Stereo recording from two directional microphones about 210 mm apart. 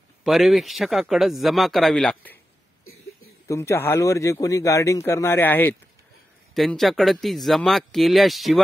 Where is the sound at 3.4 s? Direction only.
15° left (ahead or behind).